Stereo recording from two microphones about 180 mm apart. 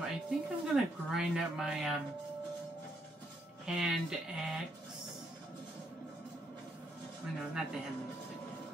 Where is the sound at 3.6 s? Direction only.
5° right (ahead or behind).